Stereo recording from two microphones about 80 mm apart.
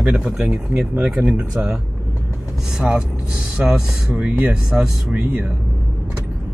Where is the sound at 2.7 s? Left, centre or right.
Centre.